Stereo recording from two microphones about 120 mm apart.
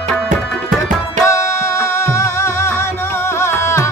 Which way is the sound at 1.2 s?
25° left (ahead or behind).